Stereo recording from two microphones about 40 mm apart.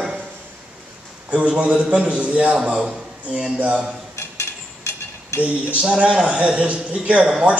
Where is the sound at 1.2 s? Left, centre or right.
Right.